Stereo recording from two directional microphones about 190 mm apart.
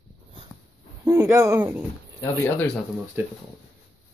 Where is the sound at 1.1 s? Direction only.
15° right (ahead or behind).